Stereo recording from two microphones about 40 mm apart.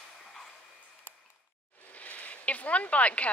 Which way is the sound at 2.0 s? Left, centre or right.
Left.